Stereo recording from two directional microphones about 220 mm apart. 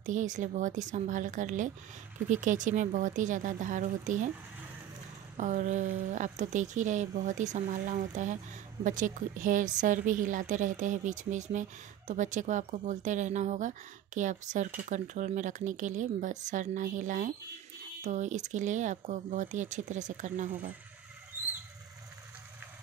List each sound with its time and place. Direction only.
0.0 s a woman's voice: 35° right (ahead or behind)
5.4 s a woman's voice: 35° right (ahead or behind)